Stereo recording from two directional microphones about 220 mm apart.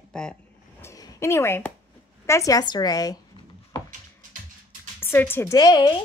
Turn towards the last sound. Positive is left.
turn(degrees=20)  # may be behind; listen again after turning